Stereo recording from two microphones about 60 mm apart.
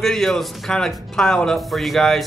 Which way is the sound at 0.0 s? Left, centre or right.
Centre.